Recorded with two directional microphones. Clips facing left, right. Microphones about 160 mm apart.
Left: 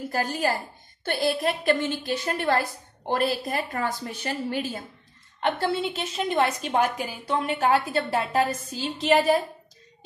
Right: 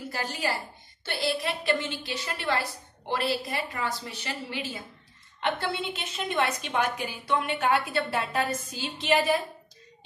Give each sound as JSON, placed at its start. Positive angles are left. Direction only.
{"t": 0.1, "sound": "a woman's voice", "side_deg": 50}